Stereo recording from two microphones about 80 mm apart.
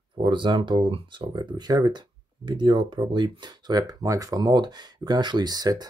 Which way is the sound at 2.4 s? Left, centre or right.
Right.